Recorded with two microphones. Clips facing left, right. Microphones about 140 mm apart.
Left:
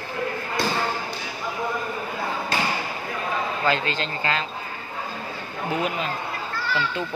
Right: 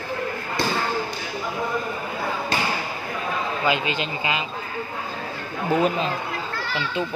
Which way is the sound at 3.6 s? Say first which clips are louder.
Right 1 dB; 15° right (ahead or behind).